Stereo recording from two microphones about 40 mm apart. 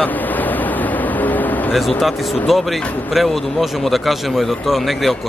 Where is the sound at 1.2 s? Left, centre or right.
Left.